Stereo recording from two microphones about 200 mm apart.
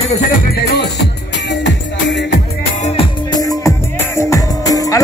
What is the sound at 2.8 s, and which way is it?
Music, 30° left (ahead or behind).